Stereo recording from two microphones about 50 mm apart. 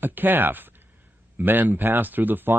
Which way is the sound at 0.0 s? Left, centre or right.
Right.